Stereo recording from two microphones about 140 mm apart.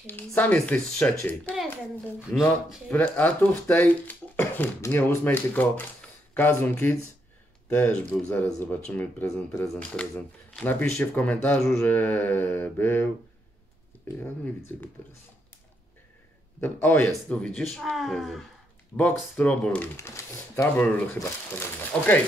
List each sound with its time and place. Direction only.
0.0 s speech: 10° left (ahead or behind)
2.3 s speech: 10° left (ahead or behind)
16.6 s speech: 15° left (ahead or behind)
18.9 s speech: 20° left (ahead or behind)
19.3 s speech: 10° left (ahead or behind)
20.0 s speech: 20° left (ahead or behind)